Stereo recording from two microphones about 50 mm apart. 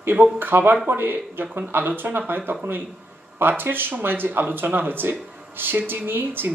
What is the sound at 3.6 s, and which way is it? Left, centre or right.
Speech, right.